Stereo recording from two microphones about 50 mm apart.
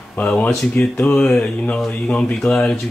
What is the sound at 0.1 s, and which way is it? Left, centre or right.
Speech, left.